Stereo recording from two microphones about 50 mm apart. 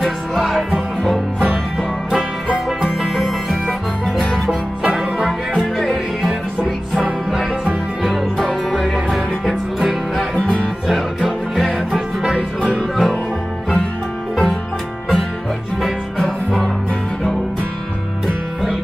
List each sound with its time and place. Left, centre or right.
0.0 s music: centre
2.8 s music: centre
4.5 s music: centre
5.8 s music: centre
6.6 s music: centre
7.3 s music: centre
10.3 s music: left
11.9 s music: centre
12.9 s music: centre
14.3 s music: centre
16.2 s music: centre